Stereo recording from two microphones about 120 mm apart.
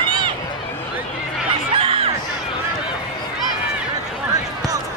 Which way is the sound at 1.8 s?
50° right (ahead or behind).